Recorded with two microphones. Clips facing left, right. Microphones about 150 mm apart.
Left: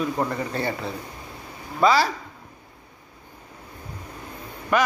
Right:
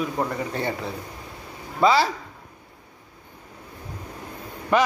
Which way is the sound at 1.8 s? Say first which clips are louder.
Even; 20° right (ahead or behind).